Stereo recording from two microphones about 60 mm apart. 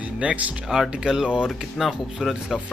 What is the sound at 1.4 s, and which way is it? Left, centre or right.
Speech, centre.